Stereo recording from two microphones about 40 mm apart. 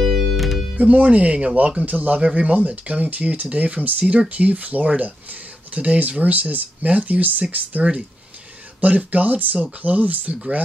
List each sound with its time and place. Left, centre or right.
0.0 s music: centre
0.7 s speech: right
8.8 s speech: right